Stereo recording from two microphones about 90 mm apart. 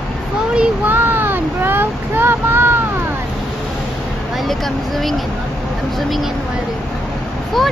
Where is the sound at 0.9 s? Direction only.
20° right (ahead or behind).